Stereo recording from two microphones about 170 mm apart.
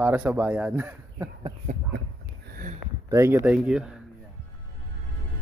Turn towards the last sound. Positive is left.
turn(degrees=-5)  # may be behind; listen again after turning